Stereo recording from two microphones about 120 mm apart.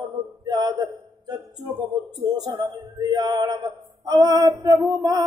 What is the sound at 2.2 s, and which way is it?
Music, 35° right (ahead or behind).